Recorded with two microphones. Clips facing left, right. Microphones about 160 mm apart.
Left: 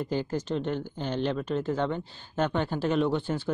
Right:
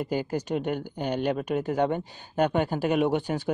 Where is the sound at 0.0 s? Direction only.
10° right (ahead or behind).